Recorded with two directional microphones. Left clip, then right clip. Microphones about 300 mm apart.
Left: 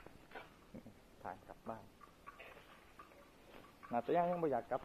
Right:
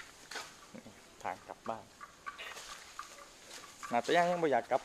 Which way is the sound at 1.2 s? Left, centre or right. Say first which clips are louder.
Right 8 dB; centre.